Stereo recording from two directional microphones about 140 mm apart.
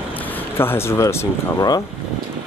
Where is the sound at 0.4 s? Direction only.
15° left (ahead or behind).